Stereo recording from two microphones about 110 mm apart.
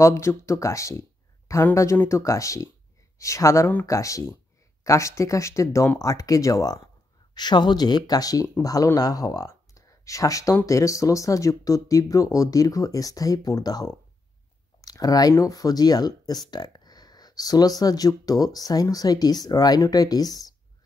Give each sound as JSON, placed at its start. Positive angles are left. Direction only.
{"t": 0.0, "sound": "speech", "side_deg": 25}